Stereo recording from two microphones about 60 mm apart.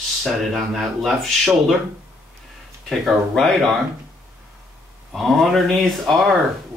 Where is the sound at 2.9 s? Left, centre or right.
Centre.